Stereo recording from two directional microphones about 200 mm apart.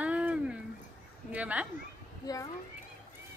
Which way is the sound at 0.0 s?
5° right (ahead or behind).